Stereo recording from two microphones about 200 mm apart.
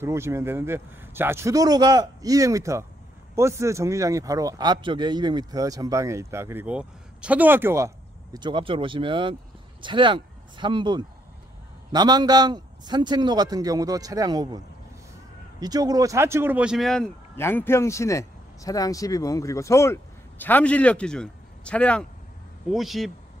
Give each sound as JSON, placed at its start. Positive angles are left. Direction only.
{"t": 0.0, "sound": "a man's voice", "side_deg": -15}
{"t": 15.6, "sound": "speech", "side_deg": -20}